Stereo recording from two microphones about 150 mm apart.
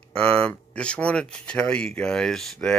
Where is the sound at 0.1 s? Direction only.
5° left (ahead or behind).